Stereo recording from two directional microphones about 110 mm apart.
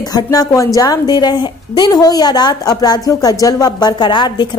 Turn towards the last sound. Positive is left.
turn(degrees=45)  # may be behind; listen again after turning